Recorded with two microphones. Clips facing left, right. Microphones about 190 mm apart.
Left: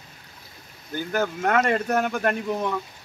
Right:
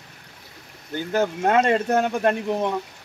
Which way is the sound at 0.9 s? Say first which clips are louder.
Right 3 dB; 25° right (ahead or behind).